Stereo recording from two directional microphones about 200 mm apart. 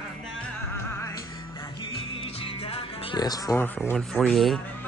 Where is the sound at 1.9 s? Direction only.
30° left (ahead or behind); by 3.9 s 10° left (ahead or behind).